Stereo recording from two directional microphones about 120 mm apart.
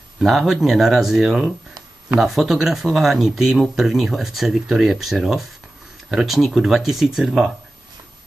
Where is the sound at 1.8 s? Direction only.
35° right (ahead or behind).